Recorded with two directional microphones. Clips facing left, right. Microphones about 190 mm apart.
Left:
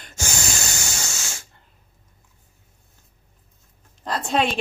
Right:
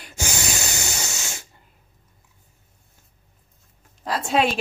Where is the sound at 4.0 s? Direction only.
5° right (ahead or behind).